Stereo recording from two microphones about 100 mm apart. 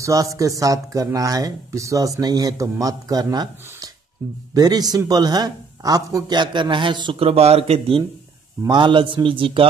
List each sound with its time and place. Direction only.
0.0 s speech: 35° right (ahead or behind); by 7.2 s 55° right (ahead or behind)
7.2 s speech: 80° right
8.6 s a man's voice: 55° right (ahead or behind)